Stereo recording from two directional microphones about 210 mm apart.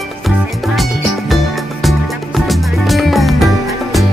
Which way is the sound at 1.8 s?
Centre (ahead or behind).